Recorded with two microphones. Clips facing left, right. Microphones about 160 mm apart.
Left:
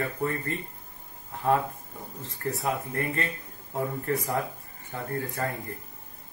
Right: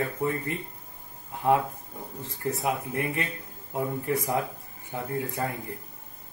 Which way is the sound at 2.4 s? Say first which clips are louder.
Right 1 dB; 15° right (ahead or behind).